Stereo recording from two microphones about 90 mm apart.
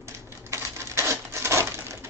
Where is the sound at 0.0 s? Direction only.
30° right (ahead or behind).